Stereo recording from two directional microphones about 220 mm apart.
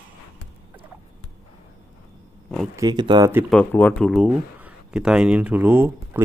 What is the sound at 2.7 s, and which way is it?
Speech, 20° right (ahead or behind).